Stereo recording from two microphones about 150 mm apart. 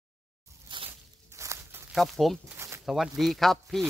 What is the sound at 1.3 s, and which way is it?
Walk, 20° right (ahead or behind).